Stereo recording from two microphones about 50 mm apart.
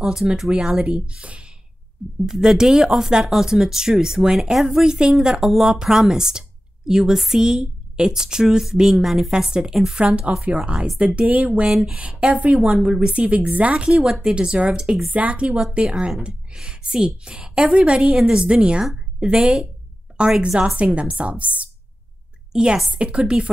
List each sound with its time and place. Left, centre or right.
0.0 s a woman's voice: centre
0.8 s a woman's voice: right
2.2 s a woman's voice: centre
9.3 s a woman's voice: centre
9.9 s a woman's voice: right
11.7 s a woman's voice: centre
22.5 s a woman's voice: centre